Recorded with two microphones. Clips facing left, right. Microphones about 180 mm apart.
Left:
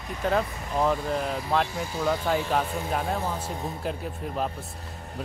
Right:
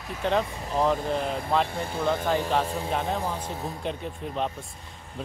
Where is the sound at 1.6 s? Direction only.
55° right (ahead or behind).